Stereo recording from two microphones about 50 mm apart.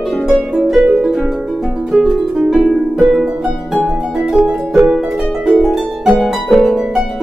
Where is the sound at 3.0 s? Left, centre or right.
Centre.